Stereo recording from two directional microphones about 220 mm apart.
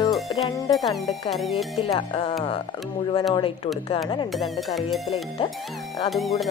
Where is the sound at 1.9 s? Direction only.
20° left (ahead or behind).